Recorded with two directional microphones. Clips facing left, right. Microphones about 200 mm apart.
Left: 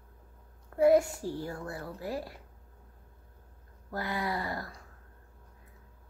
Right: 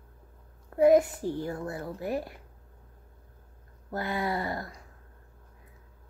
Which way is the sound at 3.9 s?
25° right (ahead or behind).